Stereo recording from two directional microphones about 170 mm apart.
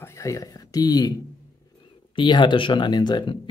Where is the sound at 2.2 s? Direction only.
25° left (ahead or behind).